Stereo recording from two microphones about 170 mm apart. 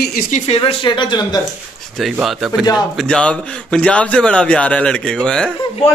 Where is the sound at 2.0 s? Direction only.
Centre (ahead or behind).